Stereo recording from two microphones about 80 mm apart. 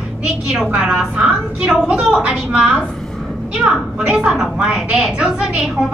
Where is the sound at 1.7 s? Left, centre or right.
Centre.